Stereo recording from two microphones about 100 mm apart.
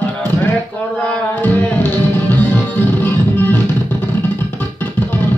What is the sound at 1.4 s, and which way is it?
Music, 20° left (ahead or behind).